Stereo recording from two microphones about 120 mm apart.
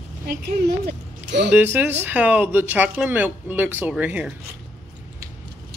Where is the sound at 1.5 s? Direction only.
15° right (ahead or behind).